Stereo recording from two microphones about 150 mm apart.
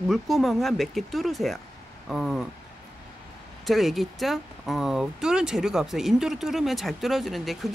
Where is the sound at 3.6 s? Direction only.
Centre (ahead or behind).